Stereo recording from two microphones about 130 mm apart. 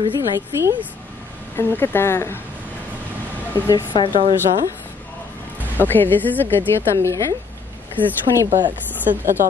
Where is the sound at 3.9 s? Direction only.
40° left (ahead or behind).